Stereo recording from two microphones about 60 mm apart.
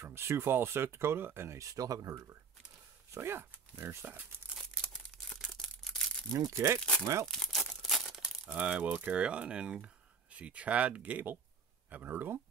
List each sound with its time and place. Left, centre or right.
0.0 s speech: right
1.6 s speech: right
3.1 s speech: right
4.0 s speech: right
4.6 s a sound: centre
6.3 s speech: right
6.8 s speech: centre
7.8 s tearing: centre
8.5 s speech: centre; by 12.4 s right